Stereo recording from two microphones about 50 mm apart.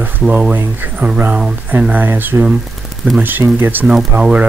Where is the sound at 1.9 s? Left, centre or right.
Right.